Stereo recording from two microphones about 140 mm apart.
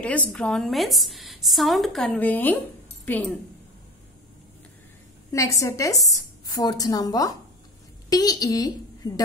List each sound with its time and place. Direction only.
0.0 s a woman's voice: 10° left (ahead or behind)
5.3 s a woman's voice: 25° left (ahead or behind)